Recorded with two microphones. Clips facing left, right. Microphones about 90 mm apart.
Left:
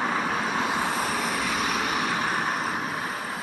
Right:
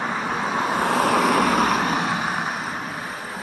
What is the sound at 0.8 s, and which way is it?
Vehicle, 70° right (ahead or behind).